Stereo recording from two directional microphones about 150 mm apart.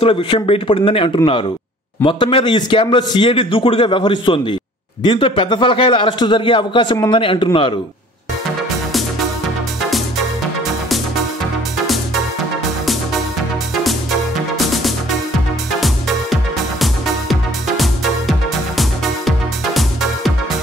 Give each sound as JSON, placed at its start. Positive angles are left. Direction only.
{"t": 0.0, "sound": "a man's voice", "side_deg": 35}
{"t": 14.7, "sound": "music", "side_deg": 0}
{"t": 16.8, "sound": "music", "side_deg": 0}